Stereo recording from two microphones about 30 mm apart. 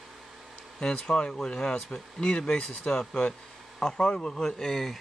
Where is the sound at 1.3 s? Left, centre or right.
Left.